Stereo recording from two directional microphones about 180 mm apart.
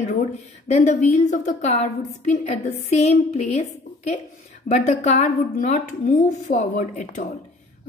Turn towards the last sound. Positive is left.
turn(degrees=40)  # may be behind; listen again after turning